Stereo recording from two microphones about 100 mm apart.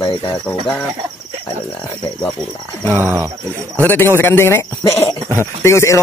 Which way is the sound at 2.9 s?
25° right (ahead or behind).